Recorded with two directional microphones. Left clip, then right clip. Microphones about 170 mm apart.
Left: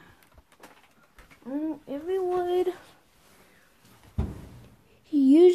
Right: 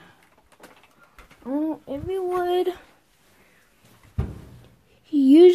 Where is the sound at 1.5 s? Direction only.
55° right (ahead or behind).